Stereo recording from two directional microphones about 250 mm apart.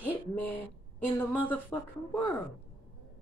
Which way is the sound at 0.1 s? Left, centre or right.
Centre.